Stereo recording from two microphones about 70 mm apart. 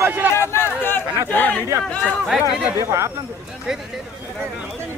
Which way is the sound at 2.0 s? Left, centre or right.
Centre.